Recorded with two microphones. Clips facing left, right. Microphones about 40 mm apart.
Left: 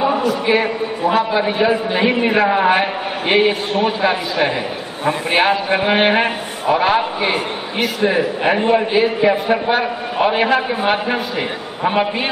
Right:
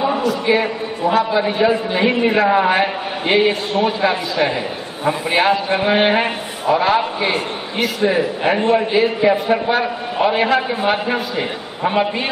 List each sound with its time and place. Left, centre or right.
0.0 s a man's voice: centre
3.3 s a man's voice: centre